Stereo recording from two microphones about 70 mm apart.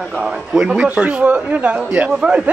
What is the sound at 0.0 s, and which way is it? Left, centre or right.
A man's voice, centre.